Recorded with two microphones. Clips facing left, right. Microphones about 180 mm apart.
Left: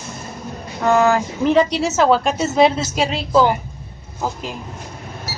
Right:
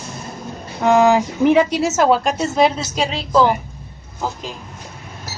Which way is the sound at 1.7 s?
Centre (ahead or behind).